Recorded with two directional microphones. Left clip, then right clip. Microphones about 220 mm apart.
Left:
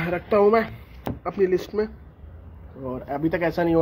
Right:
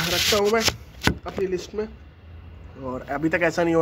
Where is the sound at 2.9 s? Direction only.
20° left (ahead or behind).